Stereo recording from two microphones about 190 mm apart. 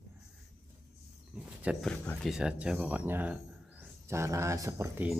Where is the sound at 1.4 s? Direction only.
Centre (ahead or behind); by 5.1 s 15° right (ahead or behind).